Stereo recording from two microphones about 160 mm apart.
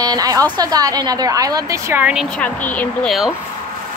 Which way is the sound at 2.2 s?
10° left (ahead or behind).